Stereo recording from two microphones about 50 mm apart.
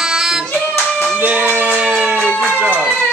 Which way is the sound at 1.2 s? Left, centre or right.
Right.